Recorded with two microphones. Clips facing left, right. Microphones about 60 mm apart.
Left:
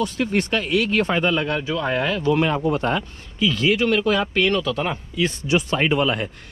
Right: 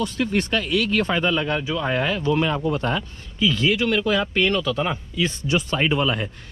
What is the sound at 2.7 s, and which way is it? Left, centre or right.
Speech, left.